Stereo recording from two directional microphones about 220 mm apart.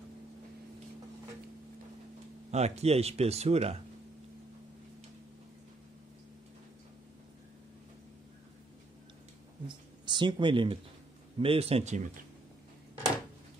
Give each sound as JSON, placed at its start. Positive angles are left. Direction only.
{"t": 2.5, "sound": "speech", "side_deg": -30}
{"t": 9.7, "sound": "a sound", "side_deg": -20}
{"t": 11.3, "sound": "speech", "side_deg": -25}